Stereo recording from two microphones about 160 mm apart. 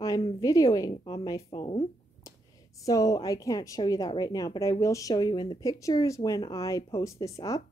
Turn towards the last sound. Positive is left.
turn(degrees=20)  # may be behind; listen again after turning